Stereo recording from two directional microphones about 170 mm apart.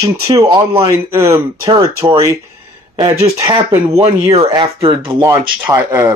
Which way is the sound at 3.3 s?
20° right (ahead or behind).